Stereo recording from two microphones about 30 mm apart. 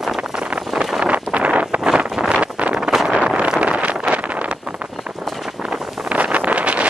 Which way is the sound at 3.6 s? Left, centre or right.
Right.